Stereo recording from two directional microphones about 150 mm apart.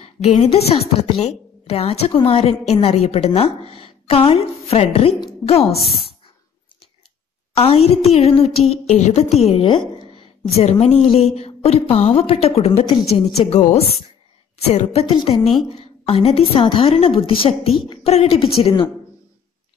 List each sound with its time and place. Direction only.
0.0 s a woman's voice: 45° left (ahead or behind)
7.5 s a woman's voice: 40° left (ahead or behind)